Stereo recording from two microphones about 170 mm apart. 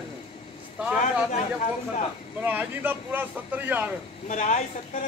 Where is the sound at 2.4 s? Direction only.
10° right (ahead or behind).